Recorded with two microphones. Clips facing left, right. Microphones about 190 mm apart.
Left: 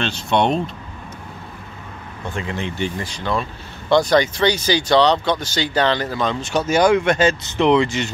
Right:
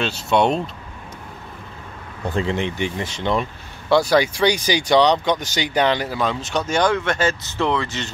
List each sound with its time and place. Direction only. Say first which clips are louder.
0.0 s speech: even; 5° right (ahead or behind)
2.4 s speech: left 1 dB; 20° right (ahead or behind)
3.9 s speech: left 1 dB; 5° right (ahead or behind); by 8.1 s 15° left (ahead or behind)